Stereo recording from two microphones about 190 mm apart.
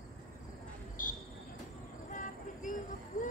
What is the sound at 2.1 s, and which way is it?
Vehicle, 40° left (ahead or behind).